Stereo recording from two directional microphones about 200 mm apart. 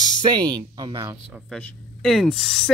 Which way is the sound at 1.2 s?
Centre (ahead or behind).